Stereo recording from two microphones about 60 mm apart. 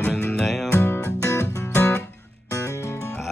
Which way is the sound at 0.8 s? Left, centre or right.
Left.